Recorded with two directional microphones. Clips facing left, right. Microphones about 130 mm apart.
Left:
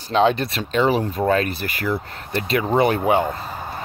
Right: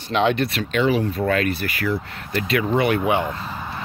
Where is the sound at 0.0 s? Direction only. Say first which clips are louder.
Left 2 dB; 35° left (ahead or behind).